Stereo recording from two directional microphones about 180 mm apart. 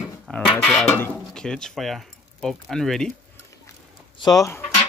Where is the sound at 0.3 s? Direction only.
5° left (ahead or behind).